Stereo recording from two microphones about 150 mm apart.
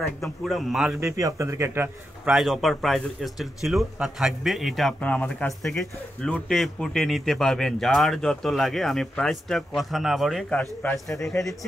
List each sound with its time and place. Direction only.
0.0 s speech: centre (ahead or behind)
1.2 s speech: 20° right (ahead or behind)
2.2 s speech: centre (ahead or behind); by 11.2 s 15° left (ahead or behind)